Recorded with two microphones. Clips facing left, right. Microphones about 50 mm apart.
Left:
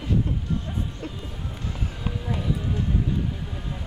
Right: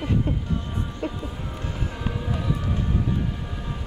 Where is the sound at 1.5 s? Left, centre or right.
Right.